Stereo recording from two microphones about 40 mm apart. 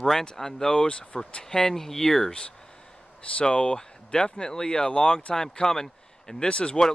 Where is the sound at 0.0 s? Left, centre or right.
Centre.